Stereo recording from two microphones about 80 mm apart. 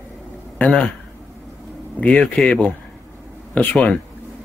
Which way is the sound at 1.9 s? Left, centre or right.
Centre.